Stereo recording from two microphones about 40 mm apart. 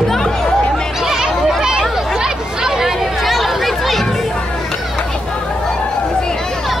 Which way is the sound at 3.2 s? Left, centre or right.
Centre.